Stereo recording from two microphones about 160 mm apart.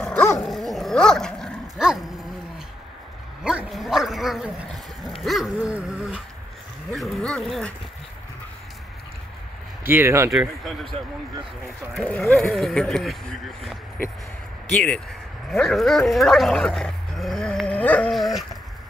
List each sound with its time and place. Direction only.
0.0 s dog: 10° left (ahead or behind)
3.4 s dog: 5° right (ahead or behind)
6.9 s a sound: centre (ahead or behind)
9.8 s speech: 15° right (ahead or behind)
11.6 s speech: 5° left (ahead or behind)
14.7 s speech: 5° left (ahead or behind)